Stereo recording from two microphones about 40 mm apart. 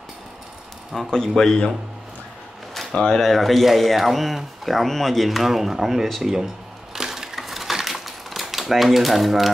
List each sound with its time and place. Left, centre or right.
0.9 s speech: centre
2.9 s speech: centre
3.2 s speech: centre
6.2 s a sound: centre
7.3 s typewriter: centre